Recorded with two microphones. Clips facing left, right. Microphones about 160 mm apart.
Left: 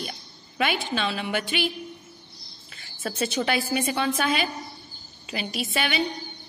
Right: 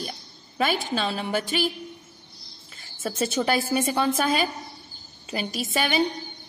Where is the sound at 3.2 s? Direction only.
45° right (ahead or behind).